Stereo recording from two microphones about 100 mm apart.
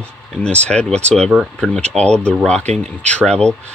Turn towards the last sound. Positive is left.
turn(degrees=10)  # may be behind; listen again after turning